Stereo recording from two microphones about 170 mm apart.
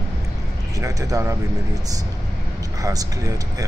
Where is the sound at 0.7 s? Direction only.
20° right (ahead or behind).